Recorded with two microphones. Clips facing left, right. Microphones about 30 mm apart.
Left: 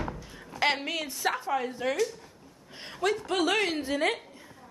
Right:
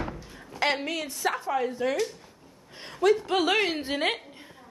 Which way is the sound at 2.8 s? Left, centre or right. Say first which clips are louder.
Right 6 dB; centre.